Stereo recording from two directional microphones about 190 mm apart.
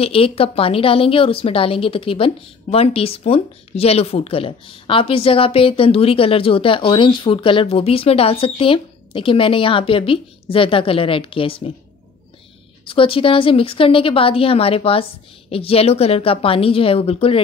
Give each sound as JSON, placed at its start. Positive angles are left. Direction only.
{"t": 0.0, "sound": "a woman's voice", "side_deg": 30}
{"t": 12.8, "sound": "a woman's voice", "side_deg": 30}